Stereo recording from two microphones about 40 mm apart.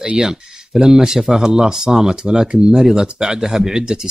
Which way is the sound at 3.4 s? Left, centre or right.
Centre.